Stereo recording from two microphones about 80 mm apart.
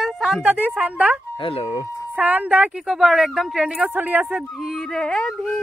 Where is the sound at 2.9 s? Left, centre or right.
Centre.